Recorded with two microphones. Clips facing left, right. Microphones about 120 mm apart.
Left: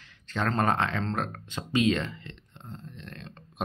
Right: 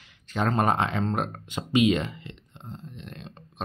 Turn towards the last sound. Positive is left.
turn(degrees=-15)  # may be behind; listen again after turning